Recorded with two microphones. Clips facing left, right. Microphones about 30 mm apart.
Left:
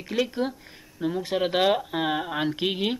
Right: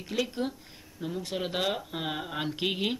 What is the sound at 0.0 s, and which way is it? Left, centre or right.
Speech, centre.